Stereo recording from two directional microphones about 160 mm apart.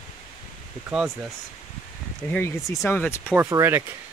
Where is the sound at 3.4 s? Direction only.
15° right (ahead or behind).